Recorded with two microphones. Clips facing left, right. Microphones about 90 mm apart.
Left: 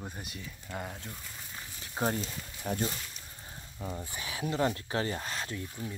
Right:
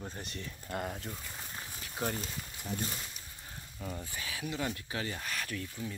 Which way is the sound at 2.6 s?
55° left (ahead or behind).